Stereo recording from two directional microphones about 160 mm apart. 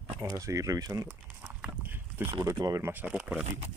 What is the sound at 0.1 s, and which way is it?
Speech, 20° right (ahead or behind).